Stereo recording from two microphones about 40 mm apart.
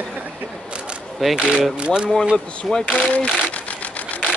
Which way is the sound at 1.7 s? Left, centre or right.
Right.